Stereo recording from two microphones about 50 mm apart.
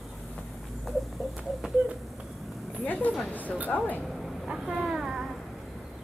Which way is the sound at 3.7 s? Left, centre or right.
Centre.